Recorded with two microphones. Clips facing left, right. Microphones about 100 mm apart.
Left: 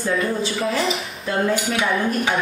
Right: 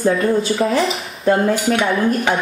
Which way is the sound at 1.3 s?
40° right (ahead or behind).